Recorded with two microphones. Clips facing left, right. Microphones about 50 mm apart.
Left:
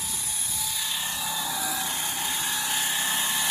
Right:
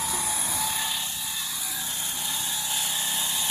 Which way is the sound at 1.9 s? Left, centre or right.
Left.